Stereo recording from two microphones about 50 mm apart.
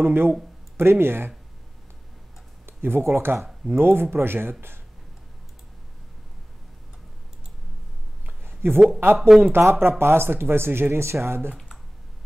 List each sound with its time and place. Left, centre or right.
0.0 s speech: right
2.6 s a sound: right
3.7 s speech: right
8.6 s speech: right